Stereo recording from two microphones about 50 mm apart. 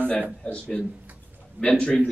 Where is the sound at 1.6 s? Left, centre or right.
Right.